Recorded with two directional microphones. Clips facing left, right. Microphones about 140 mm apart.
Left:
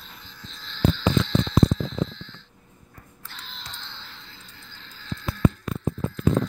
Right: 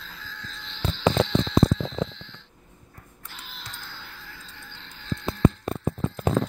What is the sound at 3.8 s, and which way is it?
Music, 25° left (ahead or behind).